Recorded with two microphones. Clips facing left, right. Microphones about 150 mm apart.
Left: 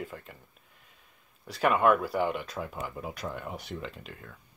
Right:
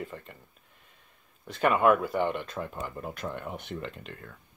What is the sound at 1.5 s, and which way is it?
Speech, centre (ahead or behind).